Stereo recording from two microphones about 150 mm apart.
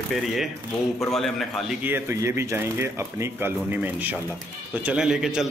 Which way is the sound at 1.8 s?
15° right (ahead or behind).